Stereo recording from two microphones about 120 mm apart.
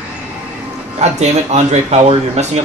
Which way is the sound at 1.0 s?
70° right (ahead or behind).